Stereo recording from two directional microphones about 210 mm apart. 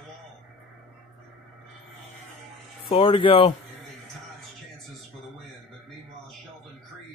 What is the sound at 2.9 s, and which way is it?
Speech, 25° left (ahead or behind).